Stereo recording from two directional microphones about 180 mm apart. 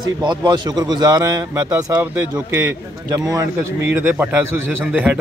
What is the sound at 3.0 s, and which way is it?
Speech, 20° right (ahead or behind).